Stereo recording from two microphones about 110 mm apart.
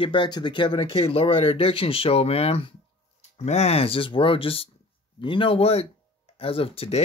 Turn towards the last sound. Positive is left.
turn(degrees=65)  # may be behind; listen again after turning